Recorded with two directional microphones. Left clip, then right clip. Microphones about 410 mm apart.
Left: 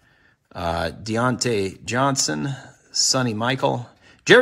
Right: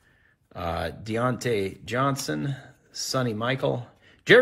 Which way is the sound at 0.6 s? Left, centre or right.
Centre.